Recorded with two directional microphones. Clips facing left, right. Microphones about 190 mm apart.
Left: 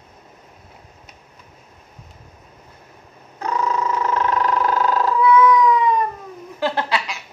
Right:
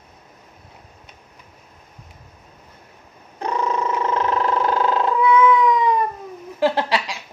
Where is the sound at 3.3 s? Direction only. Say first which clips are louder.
Even; 30° right (ahead or behind).